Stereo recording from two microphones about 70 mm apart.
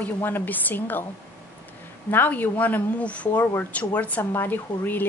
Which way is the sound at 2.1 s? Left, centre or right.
Left.